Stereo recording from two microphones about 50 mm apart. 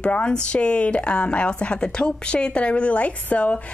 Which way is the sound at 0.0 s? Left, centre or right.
Left.